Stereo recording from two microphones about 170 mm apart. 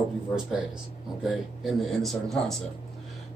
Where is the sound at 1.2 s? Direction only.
Centre (ahead or behind).